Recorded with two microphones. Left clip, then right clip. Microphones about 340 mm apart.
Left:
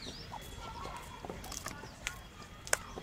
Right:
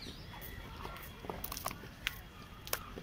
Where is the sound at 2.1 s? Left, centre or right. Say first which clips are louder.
Right 3 dB; centre.